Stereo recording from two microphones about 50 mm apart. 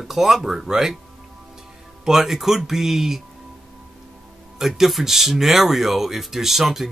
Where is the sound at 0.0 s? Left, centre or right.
Centre.